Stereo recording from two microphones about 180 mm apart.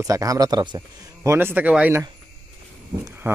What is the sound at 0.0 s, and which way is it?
A man's voice, 20° right (ahead or behind).